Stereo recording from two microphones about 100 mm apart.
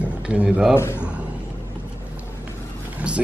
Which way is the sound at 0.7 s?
25° left (ahead or behind).